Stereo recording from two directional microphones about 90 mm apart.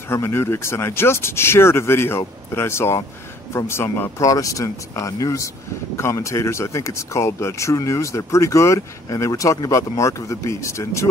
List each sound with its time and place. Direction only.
0.1 s speech: 30° left (ahead or behind)